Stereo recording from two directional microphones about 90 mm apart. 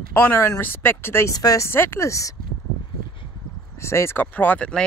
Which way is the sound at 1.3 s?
40° left (ahead or behind).